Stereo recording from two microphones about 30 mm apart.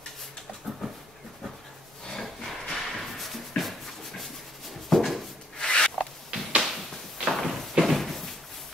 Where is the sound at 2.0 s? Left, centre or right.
Centre.